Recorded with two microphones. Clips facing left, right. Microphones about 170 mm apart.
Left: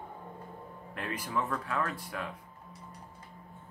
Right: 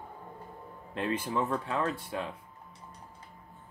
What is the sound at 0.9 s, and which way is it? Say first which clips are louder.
Speech: right 5 dB; 25° right (ahead or behind).